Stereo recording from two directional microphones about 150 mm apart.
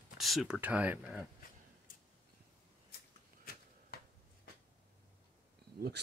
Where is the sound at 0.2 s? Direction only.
Centre (ahead or behind).